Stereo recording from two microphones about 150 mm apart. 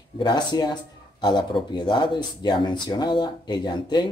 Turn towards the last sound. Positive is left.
turn(degrees=30)  # may be behind; listen again after turning